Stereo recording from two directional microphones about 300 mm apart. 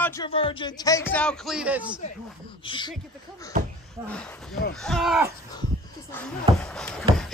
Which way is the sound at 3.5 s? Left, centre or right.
Right.